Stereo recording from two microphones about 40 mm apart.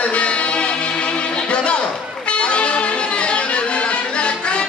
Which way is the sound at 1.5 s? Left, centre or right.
Left.